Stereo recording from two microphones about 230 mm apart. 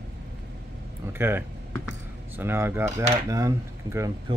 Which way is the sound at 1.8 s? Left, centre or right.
Centre.